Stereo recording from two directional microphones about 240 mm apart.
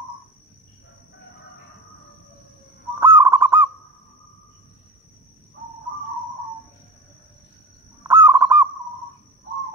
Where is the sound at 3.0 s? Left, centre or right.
Centre.